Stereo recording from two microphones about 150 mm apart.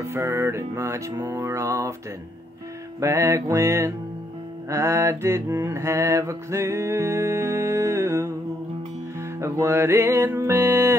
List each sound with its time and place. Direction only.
0.0 s mantra: 20° right (ahead or behind)
3.0 s mantra: 20° right (ahead or behind)
9.4 s music: 20° right (ahead or behind)